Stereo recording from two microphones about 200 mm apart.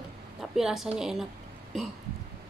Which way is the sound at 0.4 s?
Centre (ahead or behind).